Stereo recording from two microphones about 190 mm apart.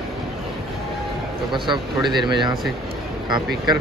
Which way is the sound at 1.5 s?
25° right (ahead or behind).